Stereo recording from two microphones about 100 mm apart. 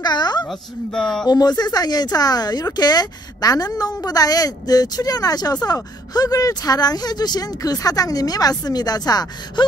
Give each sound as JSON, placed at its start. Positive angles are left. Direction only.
{"t": 0.0, "sound": "a sound", "side_deg": 45}
{"t": 0.5, "sound": "speech", "side_deg": 5}
{"t": 1.2, "sound": "speech", "side_deg": 45}